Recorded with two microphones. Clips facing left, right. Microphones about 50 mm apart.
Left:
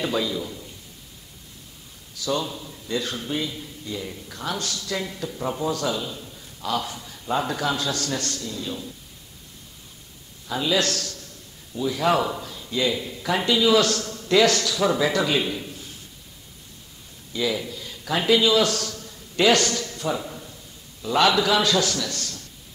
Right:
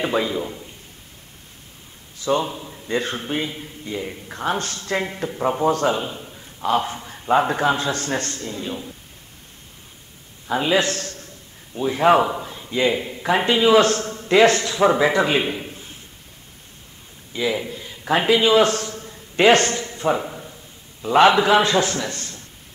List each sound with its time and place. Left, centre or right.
0.0 s a man's voice: right
2.1 s a man's voice: right
10.5 s a man's voice: right
17.3 s a sound: right
21.0 s a man's voice: right